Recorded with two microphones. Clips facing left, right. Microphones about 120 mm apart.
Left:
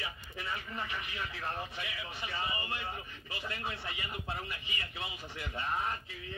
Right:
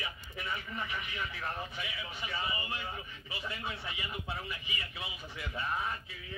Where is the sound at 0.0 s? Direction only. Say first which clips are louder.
Even; 35° left (ahead or behind).